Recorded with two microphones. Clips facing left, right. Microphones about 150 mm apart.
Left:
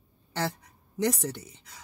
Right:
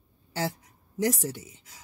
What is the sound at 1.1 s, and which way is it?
Speech, 70° left (ahead or behind).